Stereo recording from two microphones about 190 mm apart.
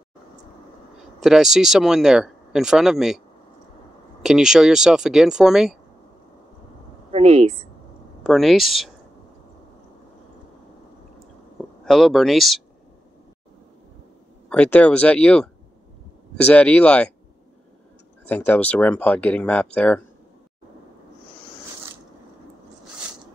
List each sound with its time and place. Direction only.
1.2 s speech: centre (ahead or behind)
4.2 s speech: 5° right (ahead or behind)
7.1 s speech: 35° right (ahead or behind)
8.2 s speech: centre (ahead or behind)
11.8 s speech: centre (ahead or behind)
14.5 s speech: 5° left (ahead or behind)
18.2 s speech: 10° left (ahead or behind)